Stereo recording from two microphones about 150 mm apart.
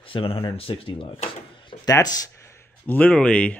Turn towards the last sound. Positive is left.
turn(degrees=10)  # may be behind; listen again after turning